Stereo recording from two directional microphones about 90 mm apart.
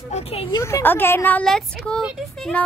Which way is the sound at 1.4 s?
5° left (ahead or behind).